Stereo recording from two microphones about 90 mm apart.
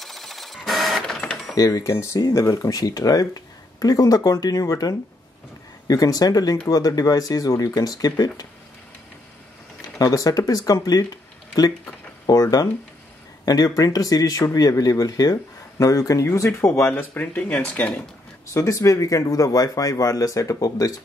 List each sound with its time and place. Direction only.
0.0 s printer: centre (ahead or behind)
1.6 s speech: 35° left (ahead or behind)
9.8 s speech: 45° left (ahead or behind); by 18.1 s 15° left (ahead or behind)
18.5 s speech: 35° left (ahead or behind)